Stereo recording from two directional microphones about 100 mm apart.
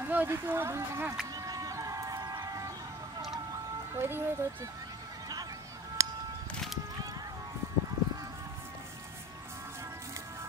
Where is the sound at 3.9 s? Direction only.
25° right (ahead or behind).